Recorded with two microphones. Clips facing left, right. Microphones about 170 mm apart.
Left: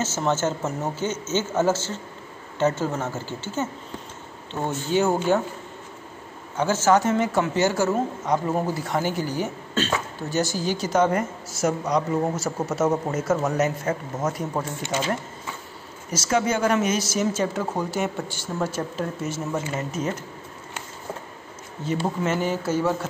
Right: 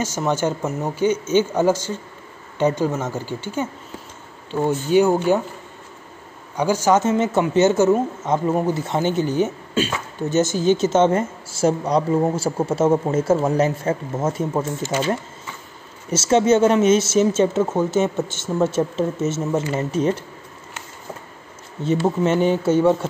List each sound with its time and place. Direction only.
0.0 s speech: 15° right (ahead or behind)
6.5 s a woman's voice: 15° right (ahead or behind)
9.8 s speech: 10° right (ahead or behind)
10.3 s a woman's voice: 20° right (ahead or behind)
16.1 s a woman's voice: 25° right (ahead or behind)
21.8 s a woman's voice: 25° right (ahead or behind)